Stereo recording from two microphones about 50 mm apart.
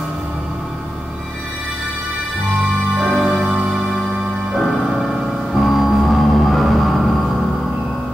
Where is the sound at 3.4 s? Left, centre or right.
Right.